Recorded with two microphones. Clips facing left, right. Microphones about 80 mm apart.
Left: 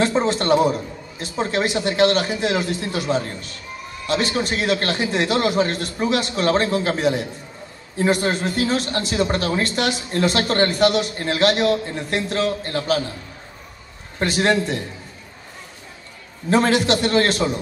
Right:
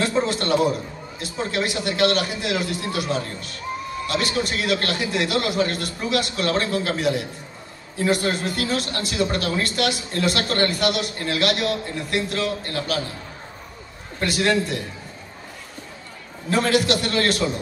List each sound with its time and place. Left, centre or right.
0.0 s speech: left
14.2 s speech: left
16.4 s speech: left